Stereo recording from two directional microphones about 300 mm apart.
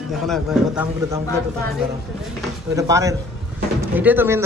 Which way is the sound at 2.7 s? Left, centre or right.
Centre.